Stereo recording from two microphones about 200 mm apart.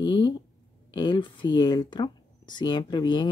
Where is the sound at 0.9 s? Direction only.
20° left (ahead or behind).